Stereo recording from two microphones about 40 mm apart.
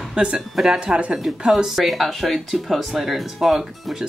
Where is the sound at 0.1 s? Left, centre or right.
Right.